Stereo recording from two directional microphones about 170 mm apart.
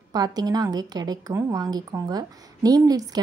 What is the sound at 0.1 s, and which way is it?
A woman's voice, 25° right (ahead or behind).